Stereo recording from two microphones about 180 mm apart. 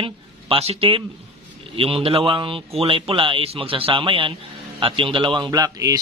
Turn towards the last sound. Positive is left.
turn(degrees=-20)  # may be behind; listen again after turning